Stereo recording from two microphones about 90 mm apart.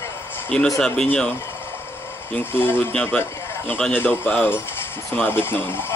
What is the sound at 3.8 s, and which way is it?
Speech, 20° left (ahead or behind).